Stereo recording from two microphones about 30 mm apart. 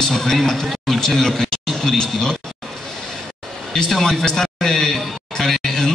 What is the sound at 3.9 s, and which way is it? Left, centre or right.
Speech, centre.